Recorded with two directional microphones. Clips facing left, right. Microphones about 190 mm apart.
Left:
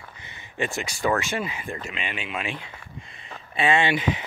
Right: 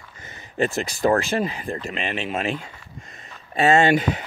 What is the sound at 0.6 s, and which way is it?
Speech, 40° right (ahead or behind).